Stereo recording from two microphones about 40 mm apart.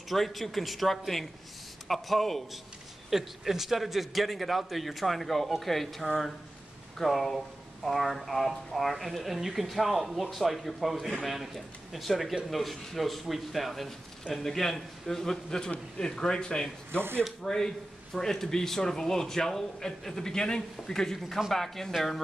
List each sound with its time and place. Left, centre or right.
0.1 s speech: centre
3.1 s speech: centre
16.0 s speech: centre